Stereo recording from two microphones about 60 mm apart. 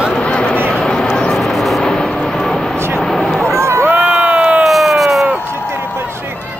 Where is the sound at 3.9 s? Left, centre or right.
Right.